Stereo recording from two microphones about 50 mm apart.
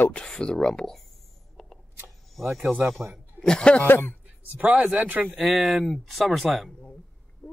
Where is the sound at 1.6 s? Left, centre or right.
Centre.